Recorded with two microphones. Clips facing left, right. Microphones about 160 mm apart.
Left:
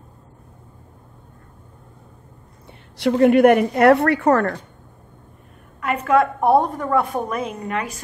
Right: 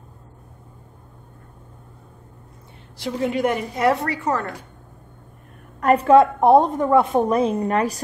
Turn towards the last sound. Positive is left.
turn(degrees=-35)  # may be behind; listen again after turning